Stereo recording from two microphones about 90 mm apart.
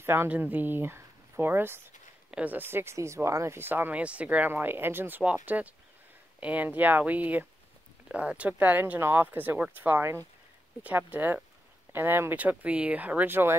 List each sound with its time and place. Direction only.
0.0 s speech: 25° right (ahead or behind)